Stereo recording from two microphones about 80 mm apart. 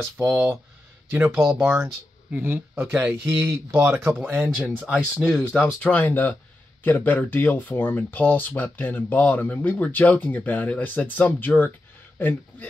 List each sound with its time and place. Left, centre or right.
0.0 s speech: right
1.2 s speech: centre
2.3 s speech: right
4.4 s speech: centre
5.6 s speech: centre